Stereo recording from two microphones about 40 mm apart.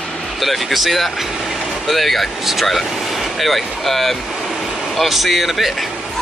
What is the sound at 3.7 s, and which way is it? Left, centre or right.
Vehicle, centre.